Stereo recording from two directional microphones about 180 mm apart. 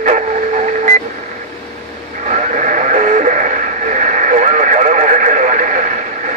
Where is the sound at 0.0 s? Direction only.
45° right (ahead or behind).